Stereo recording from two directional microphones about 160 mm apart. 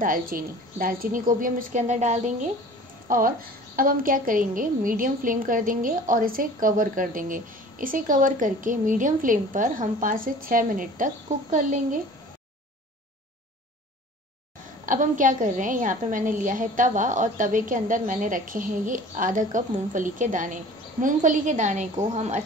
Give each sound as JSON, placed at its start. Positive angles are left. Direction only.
{"t": 0.0, "sound": "a woman's voice", "side_deg": -60}
{"t": 3.1, "sound": "a woman's voice", "side_deg": -60}
{"t": 14.9, "sound": "a woman's voice", "side_deg": -55}